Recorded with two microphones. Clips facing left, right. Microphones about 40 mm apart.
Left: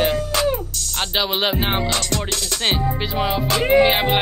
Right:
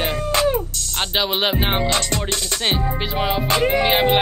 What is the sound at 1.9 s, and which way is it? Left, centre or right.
Music, right.